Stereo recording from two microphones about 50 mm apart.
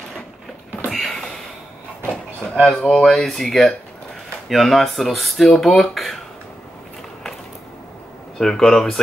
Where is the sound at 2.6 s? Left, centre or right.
Centre.